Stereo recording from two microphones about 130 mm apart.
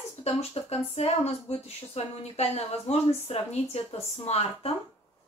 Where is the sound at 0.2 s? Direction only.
50° left (ahead or behind).